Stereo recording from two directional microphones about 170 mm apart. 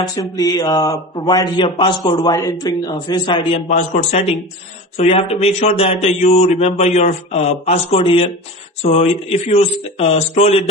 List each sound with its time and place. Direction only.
0.0 s a man's voice: 20° left (ahead or behind)
3.6 s speech: 45° left (ahead or behind)